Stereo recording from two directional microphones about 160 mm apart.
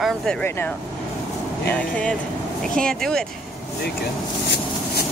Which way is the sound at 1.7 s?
10° left (ahead or behind).